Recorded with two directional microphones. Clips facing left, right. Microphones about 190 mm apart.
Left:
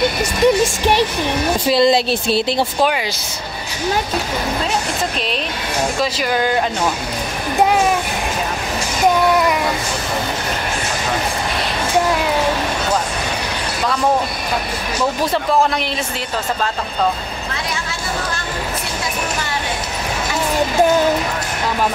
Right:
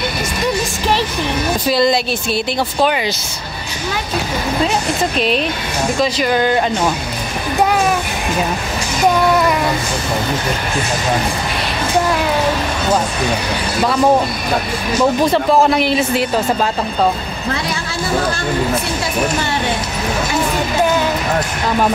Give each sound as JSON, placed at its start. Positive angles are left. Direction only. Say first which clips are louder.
{"t": 1.7, "sound": "speech", "louder": "left 1 dB", "side_deg": 25}
{"t": 5.9, "sound": "a man's voice", "louder": "right 6 dB", "side_deg": 5}
{"t": 15.3, "sound": "a man's voice", "louder": "right 4 dB", "side_deg": -5}